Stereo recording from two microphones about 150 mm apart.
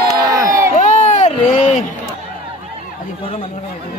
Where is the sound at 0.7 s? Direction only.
50° left (ahead or behind).